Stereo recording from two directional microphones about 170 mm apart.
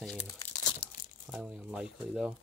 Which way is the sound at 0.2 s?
25° left (ahead or behind).